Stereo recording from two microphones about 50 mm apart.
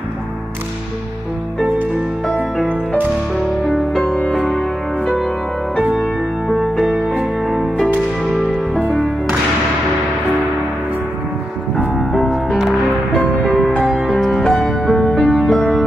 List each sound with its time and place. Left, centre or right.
3.6 s music: centre
4.0 s music: left
6.0 s music: centre
12.1 s music: centre
13.8 s music: centre
14.4 s music: centre